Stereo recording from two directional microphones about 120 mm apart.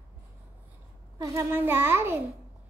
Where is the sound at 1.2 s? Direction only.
25° right (ahead or behind).